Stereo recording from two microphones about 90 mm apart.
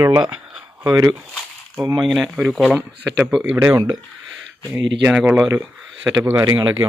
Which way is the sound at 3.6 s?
30° right (ahead or behind).